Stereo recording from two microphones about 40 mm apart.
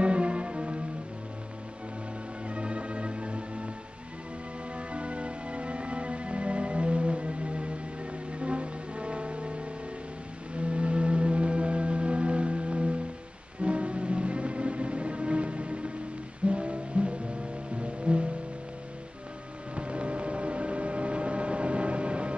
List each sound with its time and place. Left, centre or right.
0.0 s music: right
2.4 s music: right
4.7 s music: right
19.7 s music: right